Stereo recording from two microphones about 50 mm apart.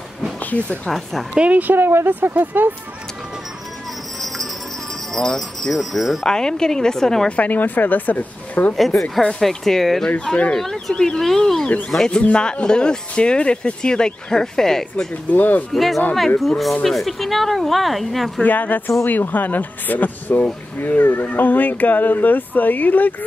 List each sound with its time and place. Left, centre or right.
0.5 s speech: left
0.8 s speech: centre
1.3 s speech: right
1.8 s speech: right
5.1 s speech: centre
6.2 s speech: centre
7.2 s speech: left
8.7 s speech: centre
10.3 s speech: left
12.0 s speech: left
15.3 s speech: left
15.7 s speech: centre
18.4 s speech: left